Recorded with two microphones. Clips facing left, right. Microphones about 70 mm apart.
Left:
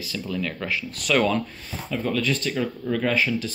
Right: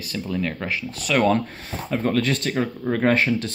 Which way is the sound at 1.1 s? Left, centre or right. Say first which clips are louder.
Even; centre.